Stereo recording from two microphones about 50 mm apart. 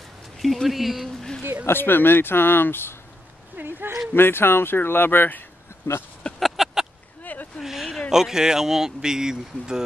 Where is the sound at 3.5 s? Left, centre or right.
Right.